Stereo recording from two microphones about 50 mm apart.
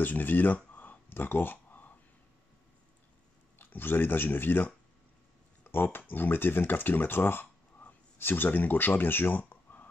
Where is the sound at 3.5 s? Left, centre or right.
Left.